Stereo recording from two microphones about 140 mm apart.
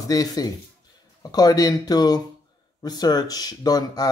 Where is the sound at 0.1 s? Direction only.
25° left (ahead or behind).